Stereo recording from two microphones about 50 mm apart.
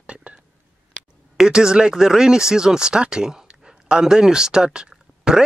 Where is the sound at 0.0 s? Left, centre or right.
Right.